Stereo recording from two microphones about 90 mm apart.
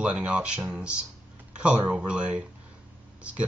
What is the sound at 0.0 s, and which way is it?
Speech, 15° right (ahead or behind).